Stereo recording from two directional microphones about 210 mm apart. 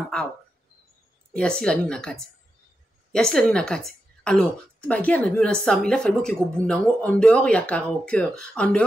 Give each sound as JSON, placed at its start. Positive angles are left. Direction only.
{"t": 1.3, "sound": "a woman's voice", "side_deg": 5}